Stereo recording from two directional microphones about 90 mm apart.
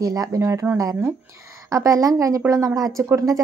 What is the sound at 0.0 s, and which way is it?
Speech, 45° right (ahead or behind).